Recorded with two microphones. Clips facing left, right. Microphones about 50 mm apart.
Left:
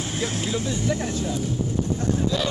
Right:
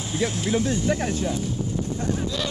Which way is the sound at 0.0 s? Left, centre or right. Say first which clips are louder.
Right 2 dB; left.